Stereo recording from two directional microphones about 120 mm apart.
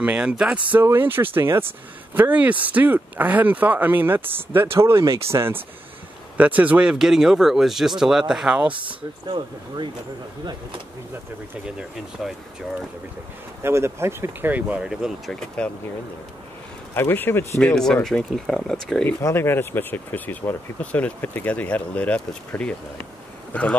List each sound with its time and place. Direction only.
0.0 s speech: 10° right (ahead or behind)
12.2 s speech: 5° right (ahead or behind)
13.6 s speech: 20° right (ahead or behind); by 15.3 s 5° right (ahead or behind)
15.6 s speech: 10° left (ahead or behind)
16.9 s speech: 15° left (ahead or behind)
17.6 s speech: 5° left (ahead or behind)
19.0 s speech: 20° left (ahead or behind)